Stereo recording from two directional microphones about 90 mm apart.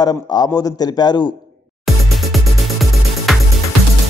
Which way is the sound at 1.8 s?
Centre (ahead or behind).